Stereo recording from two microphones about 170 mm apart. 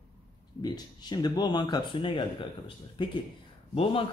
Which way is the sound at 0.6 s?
25° left (ahead or behind).